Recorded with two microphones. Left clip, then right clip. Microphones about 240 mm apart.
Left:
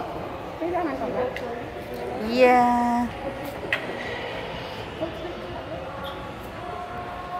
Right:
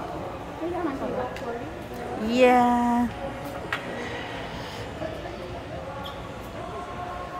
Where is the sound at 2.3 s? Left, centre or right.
Centre.